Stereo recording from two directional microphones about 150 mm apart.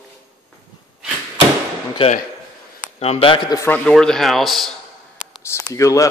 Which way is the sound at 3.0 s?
40° left (ahead or behind).